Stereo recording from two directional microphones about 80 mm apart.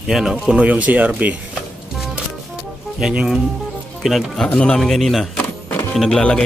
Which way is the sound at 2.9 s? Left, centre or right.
Centre.